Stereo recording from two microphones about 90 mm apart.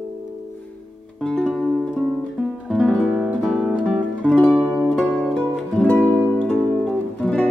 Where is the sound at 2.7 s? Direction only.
5° left (ahead or behind).